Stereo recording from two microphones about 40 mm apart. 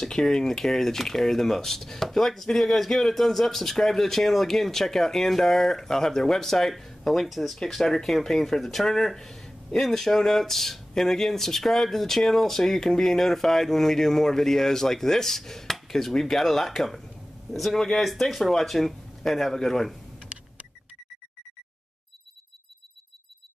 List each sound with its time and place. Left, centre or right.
0.1 s speech: centre
20.3 s vehicle: right